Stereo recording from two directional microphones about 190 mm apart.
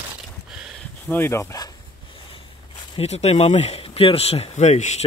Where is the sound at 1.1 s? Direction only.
15° left (ahead or behind); by 2.5 s 30° left (ahead or behind).